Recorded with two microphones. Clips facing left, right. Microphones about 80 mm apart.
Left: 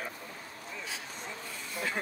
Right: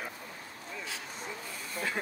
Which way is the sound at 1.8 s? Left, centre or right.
Centre.